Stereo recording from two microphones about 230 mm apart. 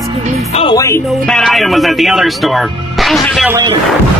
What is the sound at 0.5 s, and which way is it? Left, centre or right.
Music, left.